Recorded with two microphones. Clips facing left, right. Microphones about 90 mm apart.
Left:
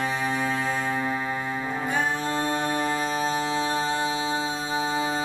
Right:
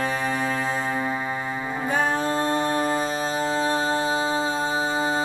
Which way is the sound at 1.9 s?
35° right (ahead or behind).